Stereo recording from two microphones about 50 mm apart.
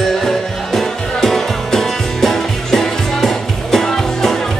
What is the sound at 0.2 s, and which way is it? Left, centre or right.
Music, centre.